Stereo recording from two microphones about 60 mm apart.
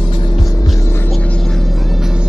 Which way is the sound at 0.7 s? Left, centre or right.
Left.